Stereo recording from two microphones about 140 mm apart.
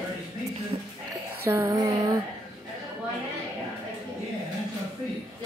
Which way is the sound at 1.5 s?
20° right (ahead or behind).